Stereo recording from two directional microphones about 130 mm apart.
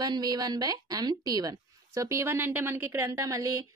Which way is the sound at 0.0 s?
30° right (ahead or behind).